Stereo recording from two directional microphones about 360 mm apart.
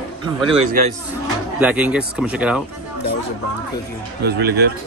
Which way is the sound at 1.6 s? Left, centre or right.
Centre.